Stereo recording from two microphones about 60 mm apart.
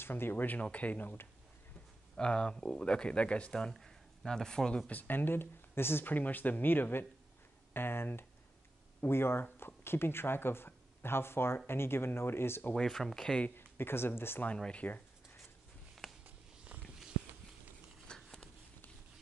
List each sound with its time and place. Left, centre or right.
0.0 s speech: left
2.1 s speech: centre
4.9 s speech: left
12.7 s speech: centre
13.6 s speech: left
14.4 s speech: centre
16.3 s a sound: right
18.0 s a sound: centre